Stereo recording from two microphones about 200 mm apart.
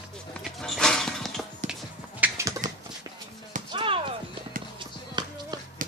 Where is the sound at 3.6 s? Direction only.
25° right (ahead or behind).